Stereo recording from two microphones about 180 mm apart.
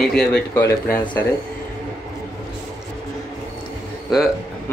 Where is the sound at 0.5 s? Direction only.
15° left (ahead or behind).